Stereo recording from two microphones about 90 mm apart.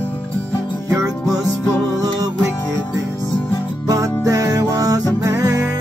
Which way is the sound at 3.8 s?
40° right (ahead or behind).